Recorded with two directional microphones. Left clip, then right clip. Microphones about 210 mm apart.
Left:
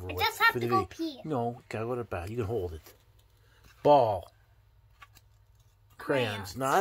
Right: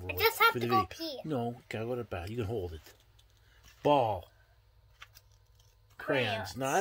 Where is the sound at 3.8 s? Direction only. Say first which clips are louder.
Left 5 dB; 5° left (ahead or behind).